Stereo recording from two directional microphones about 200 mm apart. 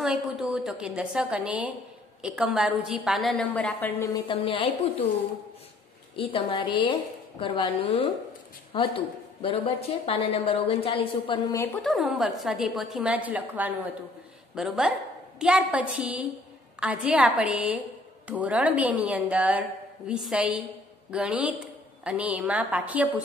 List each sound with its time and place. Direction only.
0.0 s a woman's voice: centre (ahead or behind)
4.3 s a woman's voice: 25° left (ahead or behind)
6.1 s a woman's voice: 25° left (ahead or behind)
11.8 s a woman's voice: centre (ahead or behind)